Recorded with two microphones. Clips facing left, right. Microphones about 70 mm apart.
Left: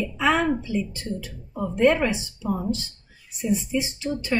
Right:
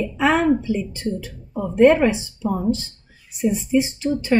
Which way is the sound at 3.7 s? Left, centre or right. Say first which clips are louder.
Right 7 dB; right.